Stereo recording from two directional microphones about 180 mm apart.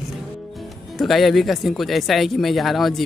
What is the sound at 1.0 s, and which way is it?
Speech, centre (ahead or behind).